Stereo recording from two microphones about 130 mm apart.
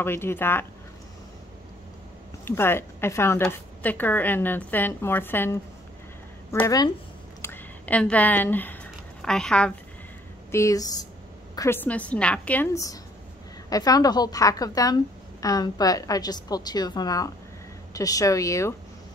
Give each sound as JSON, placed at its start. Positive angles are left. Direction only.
{"t": 0.0, "sound": "speech", "side_deg": 20}
{"t": 2.4, "sound": "a woman's voice", "side_deg": 20}
{"t": 7.4, "sound": "a sound", "side_deg": 15}
{"t": 10.5, "sound": "a woman's voice", "side_deg": 25}
{"t": 12.7, "sound": "a woman's voice", "side_deg": 25}